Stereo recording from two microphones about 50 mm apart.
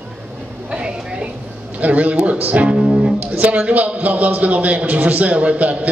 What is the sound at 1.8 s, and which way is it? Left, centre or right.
Speech, right.